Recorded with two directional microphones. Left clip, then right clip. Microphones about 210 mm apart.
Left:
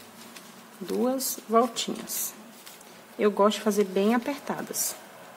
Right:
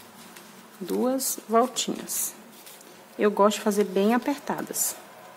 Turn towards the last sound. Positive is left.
turn(degrees=-10)  # may be behind; listen again after turning